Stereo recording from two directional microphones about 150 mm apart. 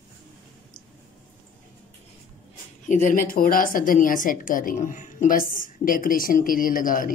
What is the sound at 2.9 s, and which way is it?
A woman's voice, 65° left (ahead or behind).